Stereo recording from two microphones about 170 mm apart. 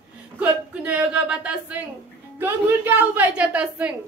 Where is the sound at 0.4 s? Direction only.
10° right (ahead or behind).